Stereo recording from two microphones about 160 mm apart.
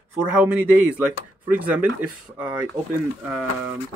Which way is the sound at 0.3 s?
10° right (ahead or behind).